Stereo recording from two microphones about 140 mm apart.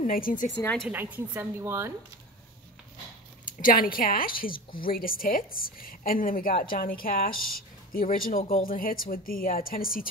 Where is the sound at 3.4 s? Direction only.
85° left.